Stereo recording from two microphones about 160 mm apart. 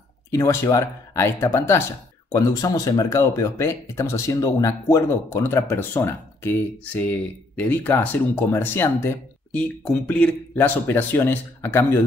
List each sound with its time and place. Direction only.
0.3 s speech: 20° left (ahead or behind)